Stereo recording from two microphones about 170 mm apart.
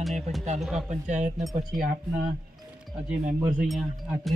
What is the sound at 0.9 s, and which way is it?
Speech, 45° right (ahead or behind).